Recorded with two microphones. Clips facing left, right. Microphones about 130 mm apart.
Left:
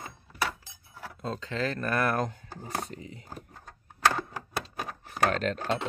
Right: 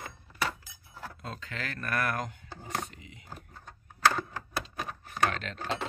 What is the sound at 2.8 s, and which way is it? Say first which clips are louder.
Cutlery: left 4 dB; 35° left (ahead or behind).